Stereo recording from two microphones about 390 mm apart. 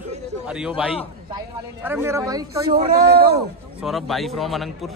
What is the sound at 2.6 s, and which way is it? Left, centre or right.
Speech, right.